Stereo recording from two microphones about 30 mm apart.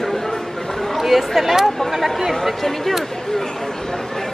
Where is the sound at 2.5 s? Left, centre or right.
Centre.